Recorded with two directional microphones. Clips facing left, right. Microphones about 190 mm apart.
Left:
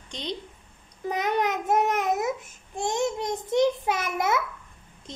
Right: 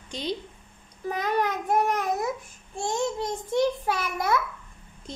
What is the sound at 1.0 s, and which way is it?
Speech, 20° left (ahead or behind).